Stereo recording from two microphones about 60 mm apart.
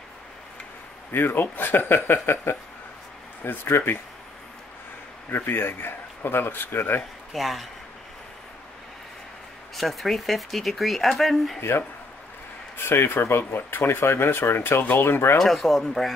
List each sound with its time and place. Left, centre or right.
1.1 s speech: left
5.3 s speech: left
7.3 s speech: centre
9.8 s speech: centre
12.7 s speech: left
15.3 s speech: centre